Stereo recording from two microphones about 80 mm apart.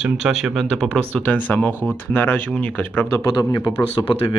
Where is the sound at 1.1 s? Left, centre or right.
Left.